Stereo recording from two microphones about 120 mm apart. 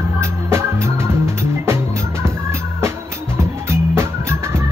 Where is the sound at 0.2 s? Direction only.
20° right (ahead or behind).